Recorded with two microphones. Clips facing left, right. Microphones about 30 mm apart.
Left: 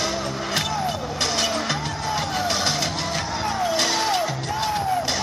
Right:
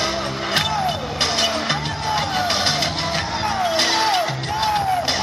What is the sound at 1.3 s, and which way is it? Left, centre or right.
Music, right.